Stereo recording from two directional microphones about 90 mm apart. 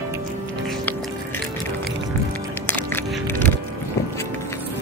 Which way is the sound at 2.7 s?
20° left (ahead or behind).